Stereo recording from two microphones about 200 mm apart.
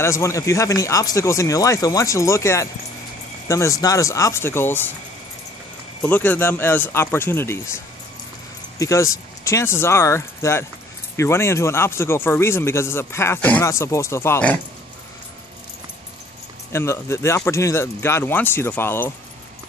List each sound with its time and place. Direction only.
0.0 s speech: 15° left (ahead or behind)
6.0 s speech: 10° left (ahead or behind)
8.7 s speech: 15° left (ahead or behind)
16.7 s speech: 15° left (ahead or behind)